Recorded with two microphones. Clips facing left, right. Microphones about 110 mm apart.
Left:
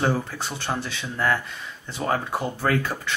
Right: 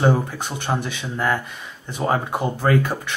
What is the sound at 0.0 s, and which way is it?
Speech, 20° right (ahead or behind).